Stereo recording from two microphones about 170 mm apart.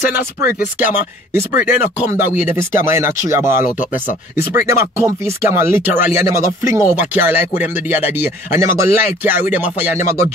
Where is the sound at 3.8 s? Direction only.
50° left (ahead or behind).